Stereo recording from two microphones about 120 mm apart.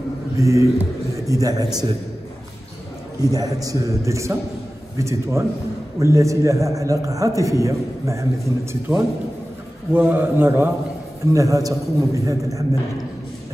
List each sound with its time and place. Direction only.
0.4 s a man's voice: 25° right (ahead or behind)
3.2 s a man's voice: 30° right (ahead or behind)
11.3 s a man's voice: 30° right (ahead or behind)